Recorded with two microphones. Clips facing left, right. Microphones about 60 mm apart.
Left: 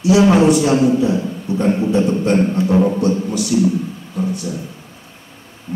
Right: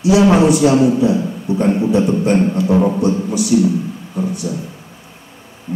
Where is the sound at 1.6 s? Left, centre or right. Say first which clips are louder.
Right 1 dB; centre.